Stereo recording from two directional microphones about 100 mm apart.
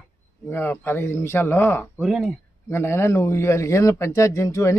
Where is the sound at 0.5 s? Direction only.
25° left (ahead or behind).